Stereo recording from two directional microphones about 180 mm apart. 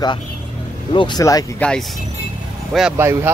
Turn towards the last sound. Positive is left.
turn(degrees=-15)  # may be behind; listen again after turning